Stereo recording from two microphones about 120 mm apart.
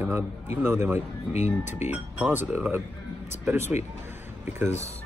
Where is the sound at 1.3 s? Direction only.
80° left.